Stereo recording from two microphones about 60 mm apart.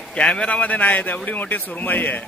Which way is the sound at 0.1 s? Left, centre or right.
Centre.